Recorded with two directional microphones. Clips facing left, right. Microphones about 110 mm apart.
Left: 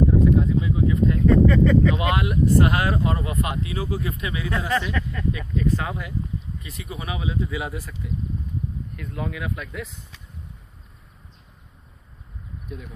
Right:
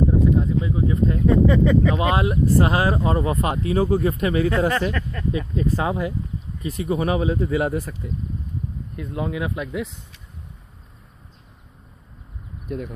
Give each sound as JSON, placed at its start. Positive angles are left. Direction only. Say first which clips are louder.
{"t": 0.2, "sound": "a sound", "louder": "even", "side_deg": -35}
{"t": 1.2, "sound": "speech", "louder": "even", "side_deg": -15}
{"t": 2.0, "sound": "speech", "louder": "right 2 dB", "side_deg": -30}
{"t": 5.3, "sound": "speech", "louder": "right 2 dB", "side_deg": -30}
{"t": 6.6, "sound": "speech", "louder": "right 12 dB", "side_deg": -40}
{"t": 8.9, "sound": "speech", "louder": "right 7 dB", "side_deg": -20}
{"t": 12.6, "sound": "speech", "louder": "right 10 dB", "side_deg": -60}